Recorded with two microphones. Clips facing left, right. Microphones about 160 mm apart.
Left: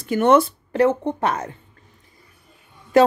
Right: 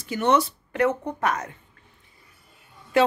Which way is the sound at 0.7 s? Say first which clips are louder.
Left 5 dB; 30° left (ahead or behind).